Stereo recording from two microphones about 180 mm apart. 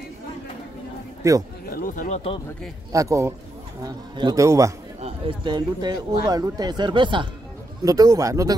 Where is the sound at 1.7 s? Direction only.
50° left (ahead or behind); by 2.4 s 35° left (ahead or behind).